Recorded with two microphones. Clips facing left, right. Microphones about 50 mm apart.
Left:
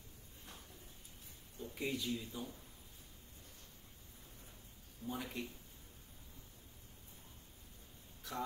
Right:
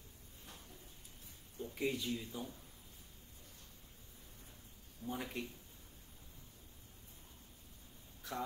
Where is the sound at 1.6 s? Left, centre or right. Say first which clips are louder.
Right 2 dB; right.